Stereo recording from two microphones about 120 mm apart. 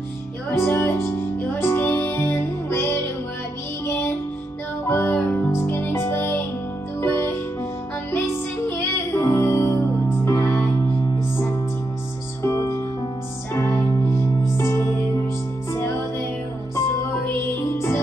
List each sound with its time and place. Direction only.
0.5 s music: 20° left (ahead or behind)
8.6 s music: 20° left (ahead or behind)
12.4 s music: 25° left (ahead or behind)
15.7 s music: 20° left (ahead or behind)